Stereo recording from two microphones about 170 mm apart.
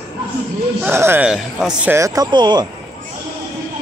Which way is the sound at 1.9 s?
20° right (ahead or behind).